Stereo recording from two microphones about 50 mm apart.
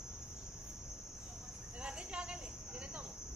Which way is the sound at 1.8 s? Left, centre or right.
Right.